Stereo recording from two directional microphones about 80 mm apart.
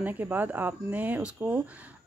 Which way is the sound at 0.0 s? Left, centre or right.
Right.